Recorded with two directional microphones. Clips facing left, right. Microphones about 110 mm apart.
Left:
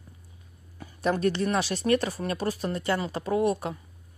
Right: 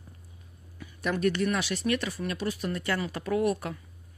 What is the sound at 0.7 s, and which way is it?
A woman's voice, 35° left (ahead or behind).